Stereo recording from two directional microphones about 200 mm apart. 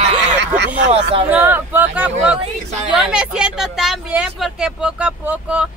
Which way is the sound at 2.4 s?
35° right (ahead or behind).